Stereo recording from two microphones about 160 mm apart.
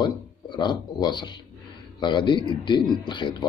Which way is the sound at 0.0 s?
30° left (ahead or behind).